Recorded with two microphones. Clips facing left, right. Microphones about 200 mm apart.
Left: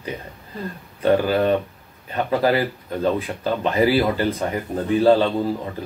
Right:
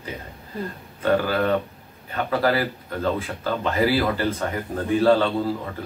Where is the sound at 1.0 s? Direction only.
15° left (ahead or behind).